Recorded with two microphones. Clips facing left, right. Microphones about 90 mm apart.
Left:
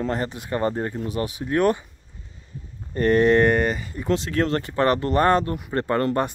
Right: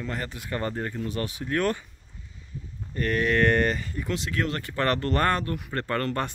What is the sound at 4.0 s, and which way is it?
Speech, 35° left (ahead or behind).